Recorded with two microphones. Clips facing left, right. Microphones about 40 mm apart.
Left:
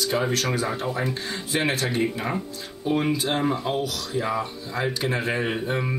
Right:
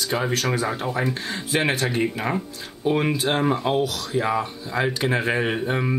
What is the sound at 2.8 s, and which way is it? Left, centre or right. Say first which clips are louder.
Speech: right 2 dB; right.